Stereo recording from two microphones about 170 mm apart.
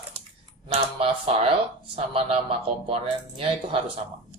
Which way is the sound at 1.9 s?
35° right (ahead or behind).